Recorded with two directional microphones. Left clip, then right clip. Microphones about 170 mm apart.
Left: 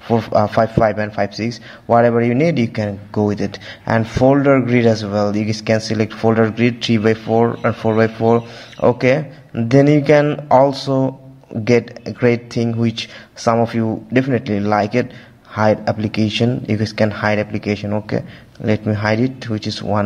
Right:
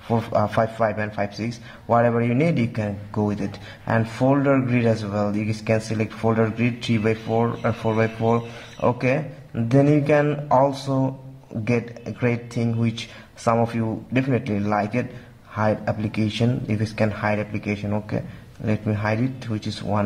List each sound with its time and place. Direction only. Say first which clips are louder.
0.1 s a man's voice: left 6 dB; 25° left (ahead or behind)